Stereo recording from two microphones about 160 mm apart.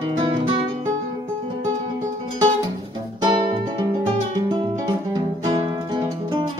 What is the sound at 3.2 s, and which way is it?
Music, 30° right (ahead or behind).